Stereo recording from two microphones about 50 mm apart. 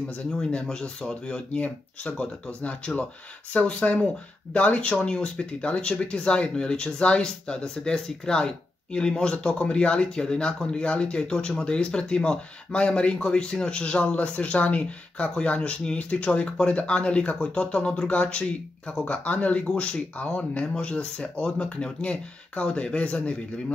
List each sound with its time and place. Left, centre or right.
0.3 s speech: centre